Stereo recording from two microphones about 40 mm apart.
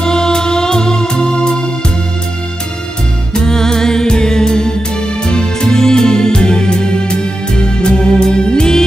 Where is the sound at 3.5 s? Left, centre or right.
Centre.